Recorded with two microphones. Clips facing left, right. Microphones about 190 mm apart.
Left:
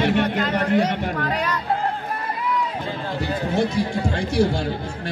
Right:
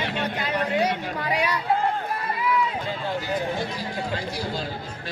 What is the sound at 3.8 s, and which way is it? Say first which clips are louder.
Speech: left 7 dB; 65° left (ahead or behind).